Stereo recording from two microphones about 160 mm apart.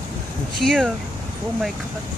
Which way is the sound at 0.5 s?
Centre (ahead or behind).